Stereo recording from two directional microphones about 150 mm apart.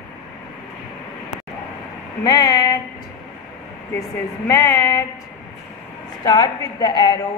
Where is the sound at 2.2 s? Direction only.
25° left (ahead or behind).